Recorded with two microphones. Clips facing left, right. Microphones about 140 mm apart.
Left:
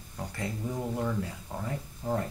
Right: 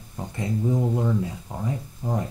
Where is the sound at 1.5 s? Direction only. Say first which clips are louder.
Right 5 dB; 15° right (ahead or behind).